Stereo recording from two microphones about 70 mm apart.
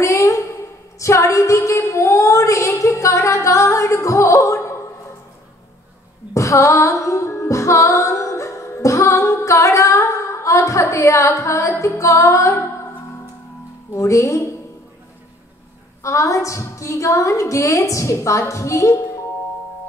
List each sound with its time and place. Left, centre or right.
0.0 s a sound: left
6.3 s music: left
11.8 s a woman's voice: left
13.9 s a woman's voice: left
16.0 s a woman's voice: left